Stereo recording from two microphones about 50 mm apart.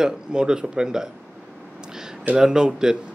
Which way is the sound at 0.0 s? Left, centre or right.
Centre.